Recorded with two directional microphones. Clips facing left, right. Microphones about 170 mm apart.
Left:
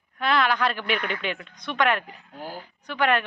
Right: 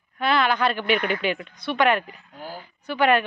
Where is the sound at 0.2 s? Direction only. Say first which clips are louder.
Right 2 dB; centre (ahead or behind).